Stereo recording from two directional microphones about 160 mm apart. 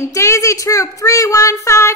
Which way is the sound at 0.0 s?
20° left (ahead or behind).